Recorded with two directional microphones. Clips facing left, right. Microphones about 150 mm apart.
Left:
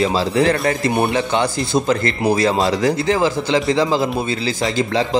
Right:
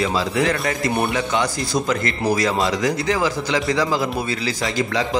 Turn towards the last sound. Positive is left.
turn(degrees=25)  # may be behind; listen again after turning